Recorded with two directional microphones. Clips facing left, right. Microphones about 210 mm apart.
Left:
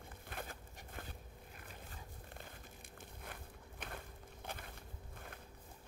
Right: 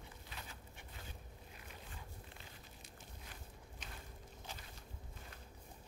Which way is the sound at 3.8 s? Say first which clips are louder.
Left 6 dB; 55° left (ahead or behind).